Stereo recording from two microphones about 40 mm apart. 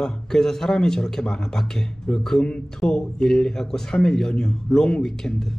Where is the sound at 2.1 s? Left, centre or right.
Centre.